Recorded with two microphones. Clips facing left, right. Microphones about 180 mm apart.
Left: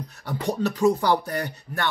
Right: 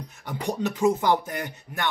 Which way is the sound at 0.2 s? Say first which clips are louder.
Left 2 dB; 15° right (ahead or behind).